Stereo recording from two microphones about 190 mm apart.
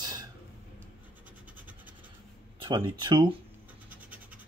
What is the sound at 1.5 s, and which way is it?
Vehicle, 10° right (ahead or behind).